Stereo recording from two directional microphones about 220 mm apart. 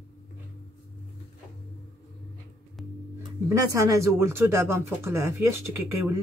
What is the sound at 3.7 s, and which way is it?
Speech, 15° right (ahead or behind).